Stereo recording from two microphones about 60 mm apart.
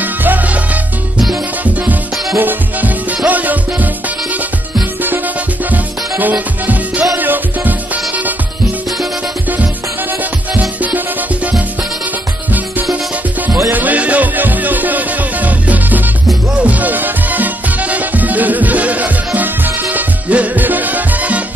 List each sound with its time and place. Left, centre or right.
0.0 s salsa music: right
1.6 s music: right
5.7 s music: right
10.5 s music: right
13.7 s music: right